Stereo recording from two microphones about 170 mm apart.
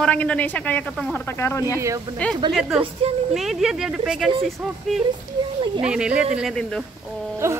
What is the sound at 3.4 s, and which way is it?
Speech, centre (ahead or behind).